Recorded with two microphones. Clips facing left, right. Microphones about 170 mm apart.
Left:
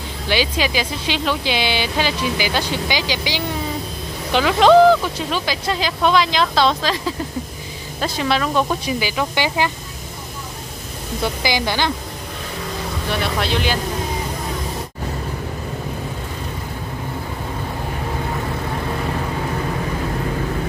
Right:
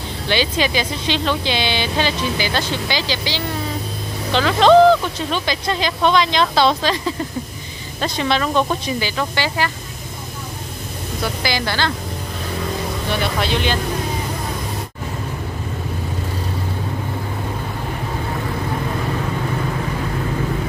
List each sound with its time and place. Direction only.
0.3 s speech: 5° left (ahead or behind)
11.4 s speech: 15° left (ahead or behind)
13.1 s speech: centre (ahead or behind)